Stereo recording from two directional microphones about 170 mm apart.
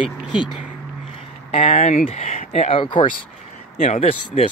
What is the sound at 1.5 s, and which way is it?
Speech, 35° left (ahead or behind).